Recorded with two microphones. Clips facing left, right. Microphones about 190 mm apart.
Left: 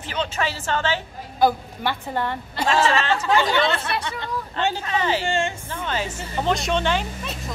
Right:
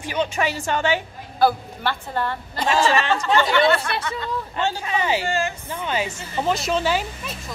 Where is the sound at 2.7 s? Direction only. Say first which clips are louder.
Right 1 dB; 5° left (ahead or behind).